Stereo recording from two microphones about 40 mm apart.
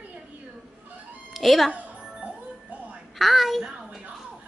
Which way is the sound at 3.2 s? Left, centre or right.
Centre.